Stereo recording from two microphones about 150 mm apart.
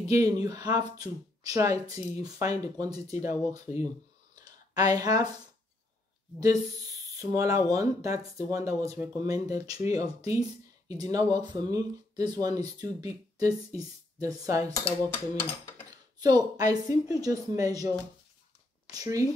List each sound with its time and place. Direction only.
0.0 s speech: 25° right (ahead or behind)
4.4 s a sound: 25° right (ahead or behind)
6.4 s speech: 20° right (ahead or behind)
15.3 s a sound: 15° left (ahead or behind)
15.9 s speech: 25° right (ahead or behind)
18.9 s speech: 20° right (ahead or behind)